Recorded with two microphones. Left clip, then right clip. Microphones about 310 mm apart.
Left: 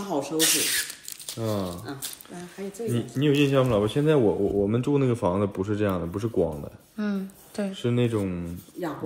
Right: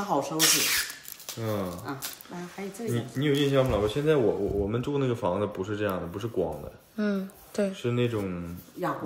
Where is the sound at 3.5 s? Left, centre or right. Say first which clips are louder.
Left 2 dB; centre.